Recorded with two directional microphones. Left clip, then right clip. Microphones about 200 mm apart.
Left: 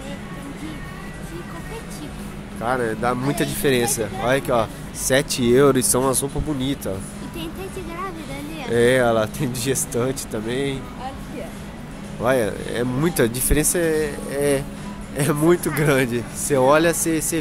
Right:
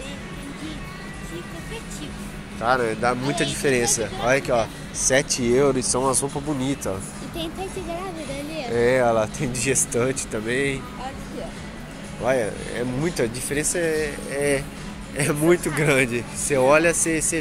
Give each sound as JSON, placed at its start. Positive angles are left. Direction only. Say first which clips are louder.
{"t": 2.6, "sound": "speech", "louder": "right 1 dB", "side_deg": 15}
{"t": 6.6, "sound": "speech", "louder": "left 1 dB", "side_deg": 10}
{"t": 8.7, "sound": "speech", "louder": "left 2 dB", "side_deg": 20}
{"t": 12.2, "sound": "speech", "louder": "left 2 dB", "side_deg": 25}